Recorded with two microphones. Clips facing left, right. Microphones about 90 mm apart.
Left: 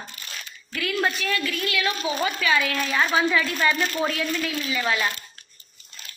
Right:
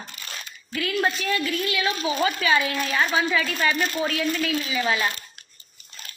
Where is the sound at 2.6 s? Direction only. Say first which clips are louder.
Even; 20° right (ahead or behind).